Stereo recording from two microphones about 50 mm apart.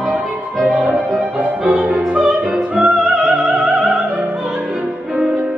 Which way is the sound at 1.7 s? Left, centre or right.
Right.